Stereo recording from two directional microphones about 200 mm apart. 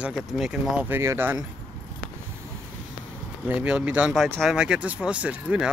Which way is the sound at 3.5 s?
5° right (ahead or behind).